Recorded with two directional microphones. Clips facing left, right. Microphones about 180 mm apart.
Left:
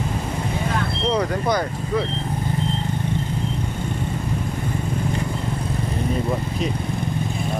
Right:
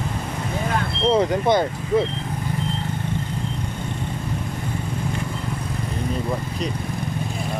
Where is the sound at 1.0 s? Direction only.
25° right (ahead or behind).